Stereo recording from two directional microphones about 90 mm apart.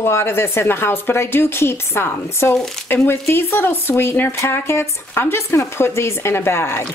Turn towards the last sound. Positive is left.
turn(degrees=30)  # may be behind; listen again after turning